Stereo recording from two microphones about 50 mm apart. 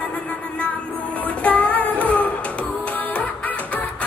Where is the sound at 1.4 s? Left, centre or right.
Left.